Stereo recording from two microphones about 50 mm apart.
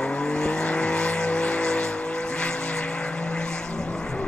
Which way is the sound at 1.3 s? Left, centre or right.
Centre.